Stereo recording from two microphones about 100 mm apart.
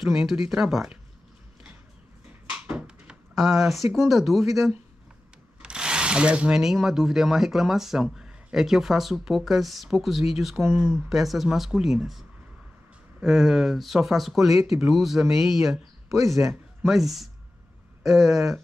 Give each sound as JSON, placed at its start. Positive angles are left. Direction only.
{"t": 0.0, "sound": "speech", "side_deg": -5}
{"t": 2.5, "sound": "a sound", "side_deg": -15}
{"t": 3.3, "sound": "speech", "side_deg": 0}
{"t": 15.7, "sound": "speech", "side_deg": -30}
{"t": 16.8, "sound": "speech", "side_deg": -5}